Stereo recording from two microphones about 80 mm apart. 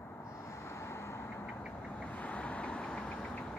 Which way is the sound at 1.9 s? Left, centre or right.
Centre.